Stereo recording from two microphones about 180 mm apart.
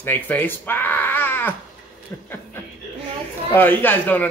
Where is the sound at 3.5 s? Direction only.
10° left (ahead or behind).